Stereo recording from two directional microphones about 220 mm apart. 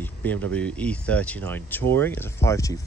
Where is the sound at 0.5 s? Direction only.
5° left (ahead or behind).